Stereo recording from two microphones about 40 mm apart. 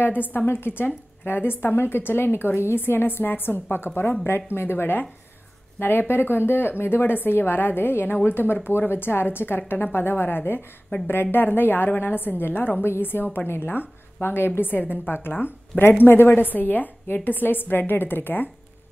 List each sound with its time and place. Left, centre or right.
0.0 s a woman's voice: left
11.4 s a woman's voice: left
12.8 s a woman's voice: left
13.5 s a woman's voice: left